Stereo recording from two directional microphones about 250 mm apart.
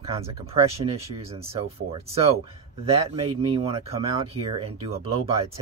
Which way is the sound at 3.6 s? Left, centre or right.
Right.